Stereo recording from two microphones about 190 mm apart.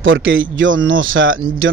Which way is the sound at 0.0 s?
90° right.